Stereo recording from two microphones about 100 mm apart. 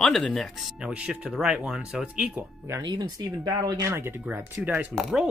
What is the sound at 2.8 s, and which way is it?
Speech, 45° right (ahead or behind).